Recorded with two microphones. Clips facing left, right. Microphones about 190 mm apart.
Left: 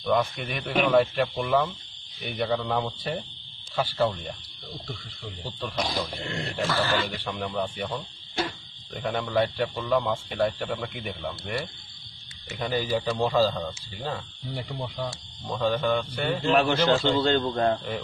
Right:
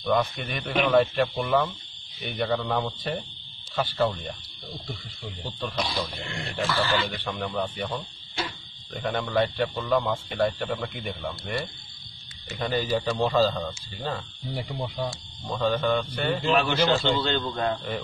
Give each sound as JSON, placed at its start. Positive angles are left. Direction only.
{"t": 0.0, "sound": "a man's voice", "side_deg": 5}
{"t": 5.9, "sound": "a man's voice", "side_deg": 45}
{"t": 7.1, "sound": "speech", "side_deg": 5}
{"t": 9.0, "sound": "a man's voice", "side_deg": 5}
{"t": 14.5, "sound": "a man's voice", "side_deg": -10}
{"t": 16.5, "sound": "a man's voice", "side_deg": 50}